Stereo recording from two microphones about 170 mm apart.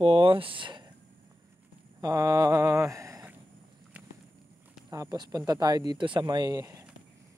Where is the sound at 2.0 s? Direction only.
20° right (ahead or behind).